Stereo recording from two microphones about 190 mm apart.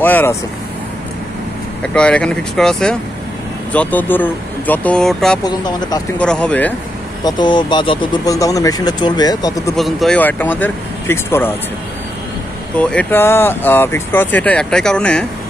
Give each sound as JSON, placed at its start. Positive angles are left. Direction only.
{"t": 0.0, "sound": "speech", "side_deg": 10}
{"t": 1.8, "sound": "speech", "side_deg": 5}
{"t": 5.4, "sound": "speech", "side_deg": 20}
{"t": 6.1, "sound": "speech", "side_deg": 5}
{"t": 7.2, "sound": "speech", "side_deg": 25}
{"t": 9.8, "sound": "speech", "side_deg": 0}
{"t": 12.7, "sound": "speech", "side_deg": 10}